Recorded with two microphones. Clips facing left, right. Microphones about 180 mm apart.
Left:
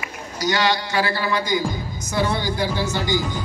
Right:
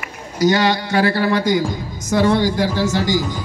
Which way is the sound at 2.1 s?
90° right.